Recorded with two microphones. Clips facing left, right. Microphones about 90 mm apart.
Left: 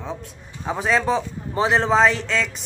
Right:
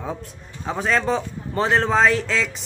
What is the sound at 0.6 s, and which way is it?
Speech, 5° left (ahead or behind).